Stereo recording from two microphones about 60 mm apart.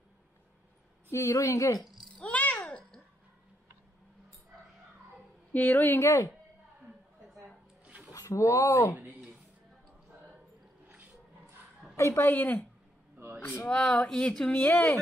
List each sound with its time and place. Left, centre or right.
1.1 s a woman's voice: left
1.4 s speech: left
1.8 s a child's voice: centre
2.1 s a sound: left
5.5 s speech: left
5.9 s speech: left
7.4 s a sound: right
8.1 s speech: left
8.9 s a woman's voice: right
10.9 s dog: right
12.0 s a woman's voice: left
12.3 s speech: left
13.7 s speech: centre
14.7 s speech: left